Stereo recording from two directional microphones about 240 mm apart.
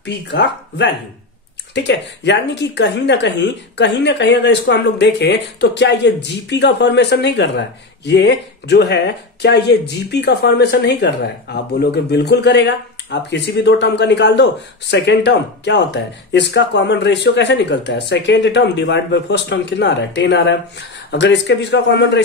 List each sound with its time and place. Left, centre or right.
0.0 s speech: left